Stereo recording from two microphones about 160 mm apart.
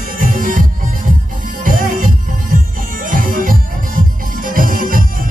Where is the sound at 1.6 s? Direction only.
55° right (ahead or behind).